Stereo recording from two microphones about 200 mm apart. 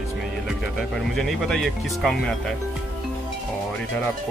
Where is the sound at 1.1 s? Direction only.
Centre (ahead or behind).